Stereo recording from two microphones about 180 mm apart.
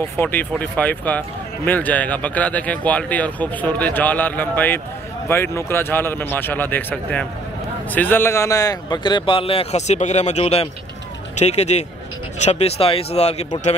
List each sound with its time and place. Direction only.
0.2 s speech: 10° left (ahead or behind); by 13.5 s 35° left (ahead or behind)